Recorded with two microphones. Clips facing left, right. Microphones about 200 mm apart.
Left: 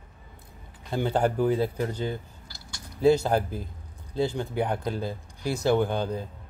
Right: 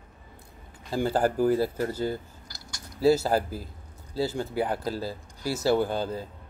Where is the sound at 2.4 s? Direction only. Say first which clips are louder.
Even; 40° right (ahead or behind).